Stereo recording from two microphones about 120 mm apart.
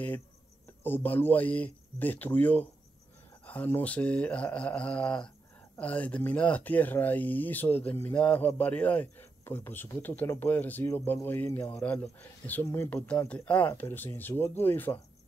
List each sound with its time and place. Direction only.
0.8 s speech: 15° left (ahead or behind)